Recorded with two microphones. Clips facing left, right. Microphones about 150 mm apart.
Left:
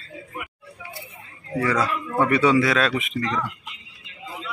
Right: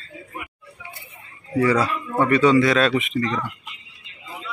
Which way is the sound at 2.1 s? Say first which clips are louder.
Right 2 dB; 10° left (ahead or behind).